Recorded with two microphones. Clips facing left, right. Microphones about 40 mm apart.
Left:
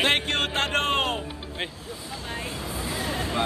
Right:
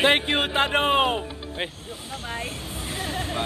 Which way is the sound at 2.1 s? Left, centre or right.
Right.